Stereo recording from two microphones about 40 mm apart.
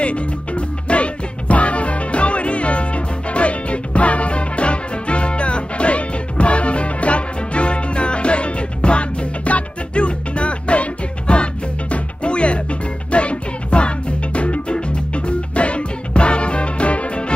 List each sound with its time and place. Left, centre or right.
0.0 s music: left